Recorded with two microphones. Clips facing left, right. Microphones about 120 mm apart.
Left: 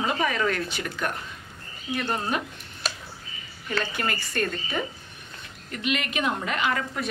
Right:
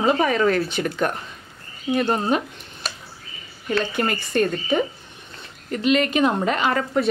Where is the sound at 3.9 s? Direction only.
20° right (ahead or behind).